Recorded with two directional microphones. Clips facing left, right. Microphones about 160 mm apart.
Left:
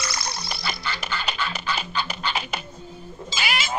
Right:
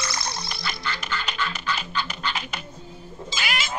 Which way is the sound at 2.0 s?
10° left (ahead or behind).